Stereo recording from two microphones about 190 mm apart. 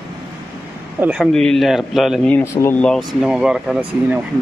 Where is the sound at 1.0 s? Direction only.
5° right (ahead or behind).